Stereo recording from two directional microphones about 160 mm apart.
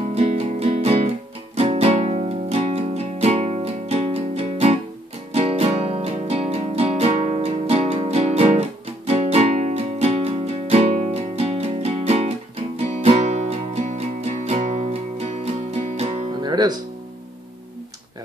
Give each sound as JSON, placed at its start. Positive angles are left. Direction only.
{"t": 0.1, "sound": "music", "side_deg": -45}
{"t": 16.4, "sound": "music", "side_deg": -25}